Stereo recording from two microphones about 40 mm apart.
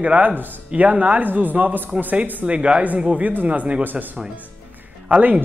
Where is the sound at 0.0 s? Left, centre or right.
Right.